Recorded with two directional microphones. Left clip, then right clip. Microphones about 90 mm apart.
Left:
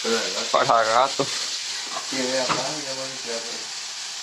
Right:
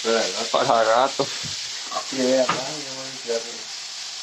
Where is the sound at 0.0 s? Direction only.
35° right (ahead or behind).